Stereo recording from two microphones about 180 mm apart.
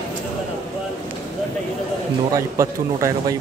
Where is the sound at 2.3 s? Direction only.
15° right (ahead or behind).